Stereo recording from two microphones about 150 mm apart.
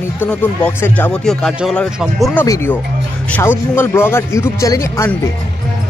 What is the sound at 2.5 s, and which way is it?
Speech, 15° left (ahead or behind).